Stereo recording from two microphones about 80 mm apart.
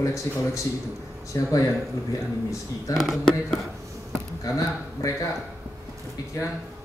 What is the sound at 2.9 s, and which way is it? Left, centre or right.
Speech, left.